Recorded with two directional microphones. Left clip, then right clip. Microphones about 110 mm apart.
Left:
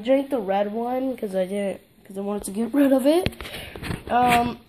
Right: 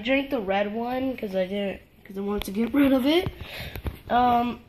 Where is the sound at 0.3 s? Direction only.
25° left (ahead or behind).